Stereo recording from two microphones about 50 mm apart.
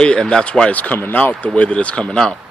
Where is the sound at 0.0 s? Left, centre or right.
Centre.